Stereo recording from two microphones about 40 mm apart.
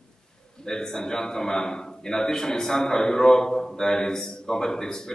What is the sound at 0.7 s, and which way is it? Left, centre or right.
A man's voice, centre.